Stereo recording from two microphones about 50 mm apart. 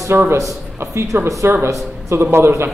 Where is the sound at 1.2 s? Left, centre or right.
Right.